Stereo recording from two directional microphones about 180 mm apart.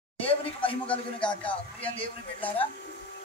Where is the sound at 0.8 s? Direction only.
5° left (ahead or behind).